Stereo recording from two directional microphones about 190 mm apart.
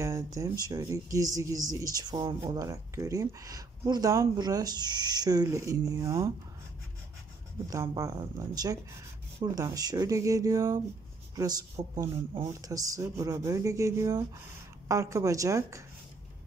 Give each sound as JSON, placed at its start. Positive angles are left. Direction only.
{"t": 0.0, "sound": "speech", "side_deg": -15}
{"t": 7.7, "sound": "speech", "side_deg": -20}
{"t": 9.4, "sound": "speech", "side_deg": -20}